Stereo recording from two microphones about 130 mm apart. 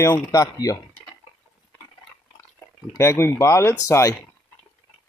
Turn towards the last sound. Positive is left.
turn(degrees=20)  # may be behind; listen again after turning